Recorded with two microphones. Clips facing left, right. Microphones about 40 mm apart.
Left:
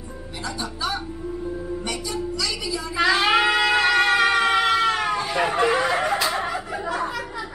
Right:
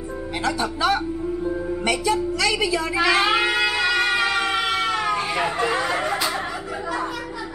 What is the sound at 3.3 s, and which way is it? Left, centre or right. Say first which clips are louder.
Shofar: left 2 dB; left.